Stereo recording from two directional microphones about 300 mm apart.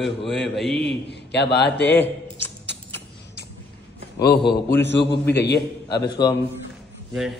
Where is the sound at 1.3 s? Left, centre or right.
Left.